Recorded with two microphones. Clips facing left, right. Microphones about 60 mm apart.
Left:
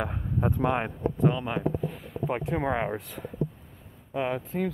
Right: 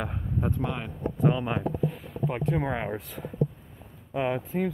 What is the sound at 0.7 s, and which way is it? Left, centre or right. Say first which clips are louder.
Speech: left 7 dB; left.